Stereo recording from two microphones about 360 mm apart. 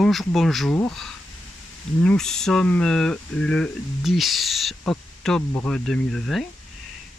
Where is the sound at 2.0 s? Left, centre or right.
Centre.